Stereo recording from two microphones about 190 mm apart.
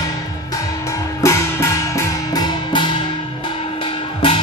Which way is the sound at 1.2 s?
15° left (ahead or behind).